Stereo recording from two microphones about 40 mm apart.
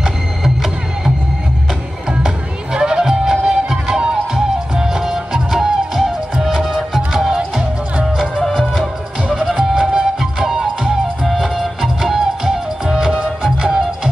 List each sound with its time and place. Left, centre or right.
0.0 s music: centre
2.0 s music: centre
8.5 s music: centre
9.5 s music: centre
11.2 s music: centre
12.0 s music: centre